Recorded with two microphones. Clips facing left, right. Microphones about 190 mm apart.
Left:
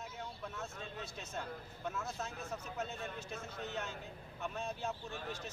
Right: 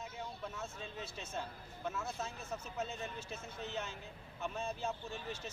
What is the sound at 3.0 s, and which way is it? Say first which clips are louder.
Speech: left 1 dB; 60° left (ahead or behind).